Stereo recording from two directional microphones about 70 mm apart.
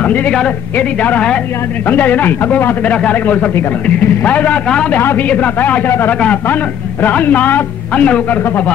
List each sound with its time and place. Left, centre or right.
0.0 s a woman's voice: left
5.9 s a man's voice: left